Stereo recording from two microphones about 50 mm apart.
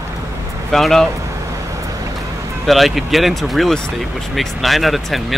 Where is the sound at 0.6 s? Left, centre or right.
Centre.